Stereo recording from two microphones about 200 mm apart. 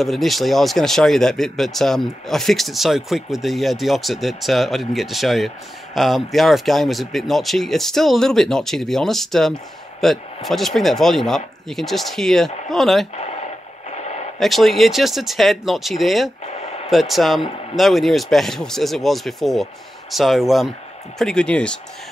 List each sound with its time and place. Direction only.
0.0 s speech: centre (ahead or behind)
13.1 s speech: 35° left (ahead or behind)
13.9 s a sound: 35° left (ahead or behind)
14.4 s speech: centre (ahead or behind)
16.5 s a sound: 30° left (ahead or behind)
16.9 s speech: centre (ahead or behind)